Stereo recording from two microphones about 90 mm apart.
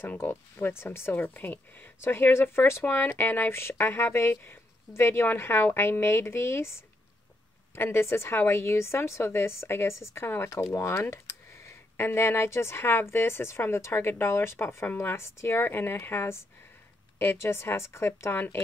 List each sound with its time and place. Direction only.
0.0 s speech: 25° left (ahead or behind)